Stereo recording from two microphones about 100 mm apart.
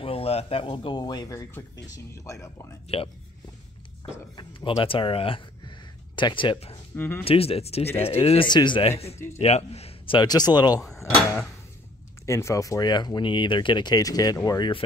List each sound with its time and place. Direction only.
0.0 s speech: 75° left (ahead or behind); by 2.8 s 30° left (ahead or behind)
4.4 s speech: 55° left (ahead or behind)
7.0 s speech: 20° left (ahead or behind)
7.2 s speech: 75° left (ahead or behind)
8.5 s speech: 50° left (ahead or behind)
9.4 s speech: 90° left
10.1 s speech: 45° left (ahead or behind)
12.3 s speech: 30° left (ahead or behind)